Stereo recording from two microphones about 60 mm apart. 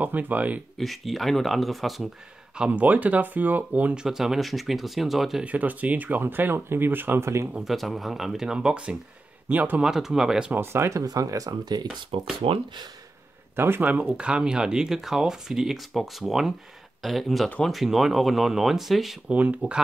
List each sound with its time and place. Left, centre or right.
0.0 s speech: right
0.7 s speech: centre
2.5 s speech: centre
2.8 s speech: right
3.9 s speech: centre
5.4 s speech: right
7.6 s speech: centre
9.5 s speech: right
9.8 s speech: centre
10.5 s speech: right
13.6 s speech: right
14.0 s speech: centre
19.2 s speech: right